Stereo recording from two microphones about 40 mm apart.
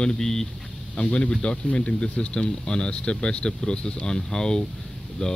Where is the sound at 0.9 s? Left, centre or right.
Left.